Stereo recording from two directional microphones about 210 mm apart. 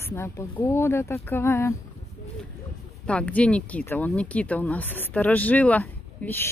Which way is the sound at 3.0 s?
5° left (ahead or behind).